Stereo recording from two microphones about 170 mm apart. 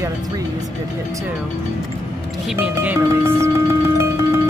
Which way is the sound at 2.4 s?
5° right (ahead or behind).